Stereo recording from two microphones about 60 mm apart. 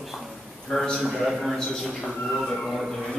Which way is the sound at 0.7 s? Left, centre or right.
Centre.